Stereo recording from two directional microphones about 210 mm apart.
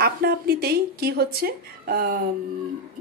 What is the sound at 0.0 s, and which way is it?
A woman's voice, 45° right (ahead or behind).